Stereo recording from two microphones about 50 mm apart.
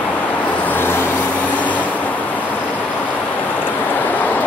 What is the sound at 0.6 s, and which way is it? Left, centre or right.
Vehicle, left.